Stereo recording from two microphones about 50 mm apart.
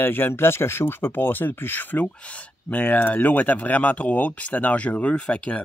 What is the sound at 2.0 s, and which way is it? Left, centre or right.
Speech, left.